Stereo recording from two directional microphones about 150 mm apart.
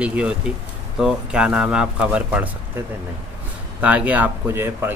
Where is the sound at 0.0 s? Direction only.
5° right (ahead or behind).